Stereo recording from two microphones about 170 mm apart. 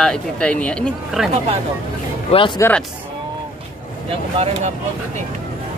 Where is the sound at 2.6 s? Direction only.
10° left (ahead or behind).